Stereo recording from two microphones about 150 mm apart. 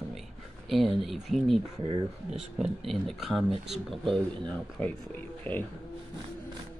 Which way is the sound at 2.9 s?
Centre (ahead or behind).